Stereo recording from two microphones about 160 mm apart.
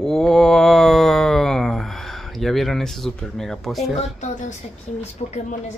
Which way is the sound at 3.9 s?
45° left (ahead or behind).